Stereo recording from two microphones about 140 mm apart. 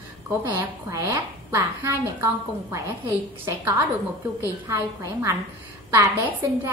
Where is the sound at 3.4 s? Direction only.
20° right (ahead or behind).